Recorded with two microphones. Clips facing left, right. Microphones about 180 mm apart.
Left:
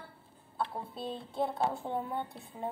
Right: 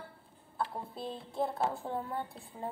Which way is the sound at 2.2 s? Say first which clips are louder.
Left 1 dB; centre (ahead or behind).